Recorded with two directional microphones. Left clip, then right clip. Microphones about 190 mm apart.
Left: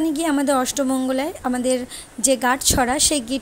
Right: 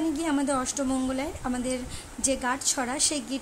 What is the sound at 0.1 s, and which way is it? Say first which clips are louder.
A woman's voice: left 7 dB; 30° left (ahead or behind).